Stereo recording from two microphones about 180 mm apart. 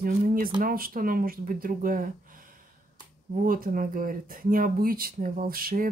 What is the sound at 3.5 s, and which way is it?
Speech, 50° right (ahead or behind).